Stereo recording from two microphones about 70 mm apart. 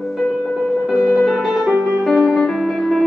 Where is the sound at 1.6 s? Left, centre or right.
Centre.